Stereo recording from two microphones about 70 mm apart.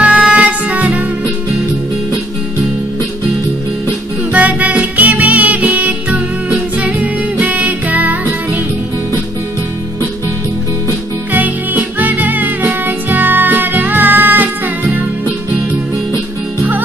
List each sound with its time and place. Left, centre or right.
0.0 s music: centre
4.3 s music: right
11.3 s music: right